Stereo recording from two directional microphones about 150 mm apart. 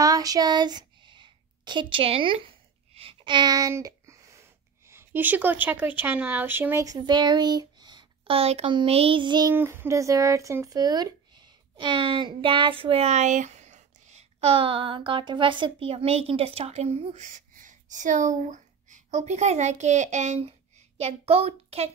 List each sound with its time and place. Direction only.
0.0 s speech: 25° right (ahead or behind)
9.5 s a child's voice: 15° right (ahead or behind); by 21.9 s 45° right (ahead or behind)